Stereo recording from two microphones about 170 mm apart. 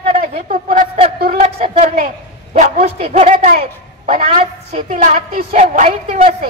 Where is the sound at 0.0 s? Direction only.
55° right (ahead or behind).